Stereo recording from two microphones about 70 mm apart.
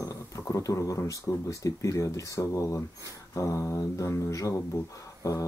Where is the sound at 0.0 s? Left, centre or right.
Left.